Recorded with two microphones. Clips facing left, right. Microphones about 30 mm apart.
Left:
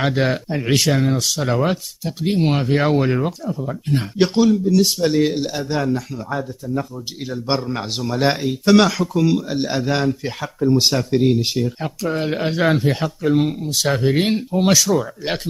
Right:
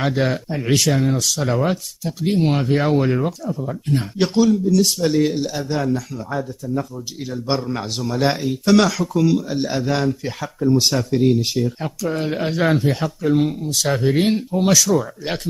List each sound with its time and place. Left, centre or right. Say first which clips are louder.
0.0 s speech: left 1 dB; centre